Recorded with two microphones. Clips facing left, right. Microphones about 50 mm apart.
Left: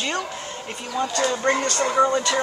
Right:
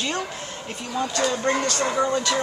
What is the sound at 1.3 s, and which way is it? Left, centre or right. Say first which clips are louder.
Speech: left 2 dB; centre.